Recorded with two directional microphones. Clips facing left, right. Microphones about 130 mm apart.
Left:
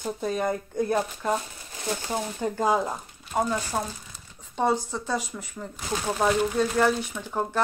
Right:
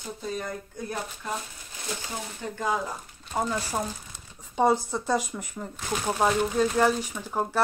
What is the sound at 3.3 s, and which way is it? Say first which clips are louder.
Speech: left 2 dB; 5° left (ahead or behind).